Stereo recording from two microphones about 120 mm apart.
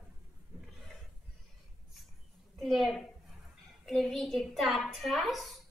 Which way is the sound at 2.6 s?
Centre (ahead or behind).